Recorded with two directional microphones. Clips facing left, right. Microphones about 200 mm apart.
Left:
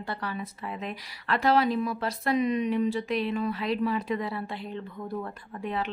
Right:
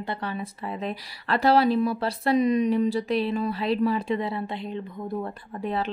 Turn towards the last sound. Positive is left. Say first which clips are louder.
# right 3 dB
turn(degrees=-35)  # may be behind; listen again after turning